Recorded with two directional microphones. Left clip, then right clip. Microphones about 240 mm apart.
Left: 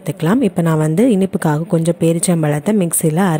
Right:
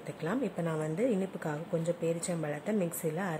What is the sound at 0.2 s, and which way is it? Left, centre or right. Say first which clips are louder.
A woman's voice: left 17 dB; left.